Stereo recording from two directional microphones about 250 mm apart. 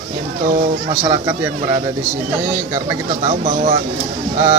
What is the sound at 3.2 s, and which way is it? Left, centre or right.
Speech, right.